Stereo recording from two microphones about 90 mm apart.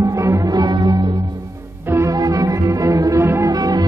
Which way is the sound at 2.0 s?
40° right (ahead or behind).